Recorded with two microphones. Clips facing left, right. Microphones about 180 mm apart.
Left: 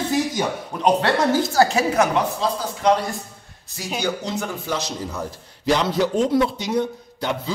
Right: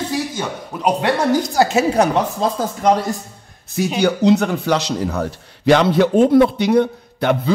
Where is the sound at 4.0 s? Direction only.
65° right (ahead or behind).